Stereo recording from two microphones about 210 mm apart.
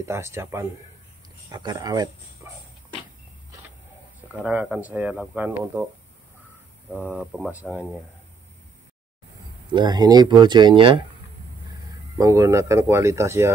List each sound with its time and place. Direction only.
0.0 s speech: 10° right (ahead or behind)
4.3 s speech: 5° right (ahead or behind)
7.0 s speech: 5° right (ahead or behind)
9.7 s speech: 20° right (ahead or behind)
12.2 s speech: 15° right (ahead or behind)